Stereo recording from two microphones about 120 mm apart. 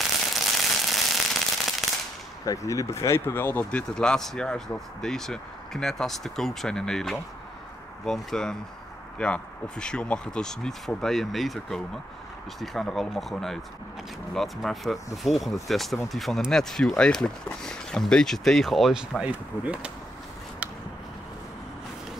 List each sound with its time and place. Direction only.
0.0 s firecracker: centre (ahead or behind)
2.4 s speech: 30° left (ahead or behind)
3.9 s speech: 5° left (ahead or behind); by 19.9 s 10° right (ahead or behind)